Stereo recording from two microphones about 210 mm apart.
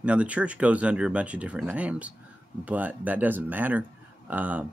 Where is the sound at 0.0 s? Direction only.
5° right (ahead or behind).